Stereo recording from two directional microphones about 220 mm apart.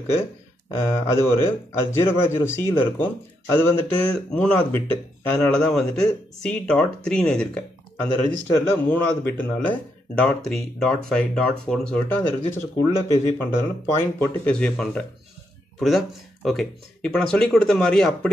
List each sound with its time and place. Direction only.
0.7 s speech: 10° left (ahead or behind)